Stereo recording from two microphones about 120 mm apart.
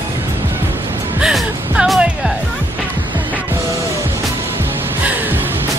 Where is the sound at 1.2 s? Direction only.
5° right (ahead or behind).